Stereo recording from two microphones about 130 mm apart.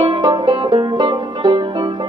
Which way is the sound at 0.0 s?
35° right (ahead or behind).